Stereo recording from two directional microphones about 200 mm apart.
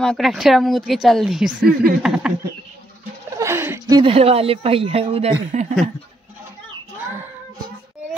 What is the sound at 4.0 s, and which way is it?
Speech, 30° right (ahead or behind).